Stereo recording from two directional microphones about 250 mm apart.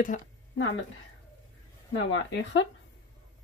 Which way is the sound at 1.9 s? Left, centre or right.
Left.